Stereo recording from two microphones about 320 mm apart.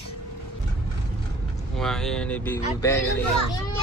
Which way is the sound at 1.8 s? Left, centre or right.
Centre.